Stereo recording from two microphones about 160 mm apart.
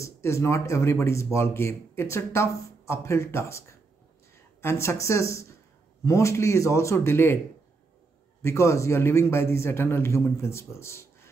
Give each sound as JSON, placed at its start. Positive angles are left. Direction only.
{"t": 0.0, "sound": "speech", "side_deg": 15}
{"t": 8.4, "sound": "speech", "side_deg": 15}